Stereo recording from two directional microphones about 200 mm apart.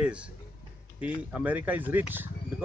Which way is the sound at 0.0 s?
5° right (ahead or behind).